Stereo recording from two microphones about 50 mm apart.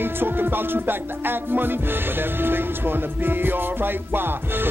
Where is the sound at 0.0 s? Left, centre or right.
Right.